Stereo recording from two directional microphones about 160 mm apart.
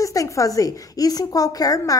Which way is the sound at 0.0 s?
20° left (ahead or behind).